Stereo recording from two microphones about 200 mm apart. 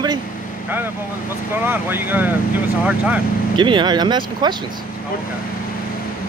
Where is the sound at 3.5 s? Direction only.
25° right (ahead or behind).